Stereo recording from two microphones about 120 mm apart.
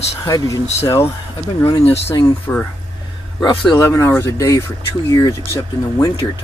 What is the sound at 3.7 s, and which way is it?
Speech, 25° left (ahead or behind).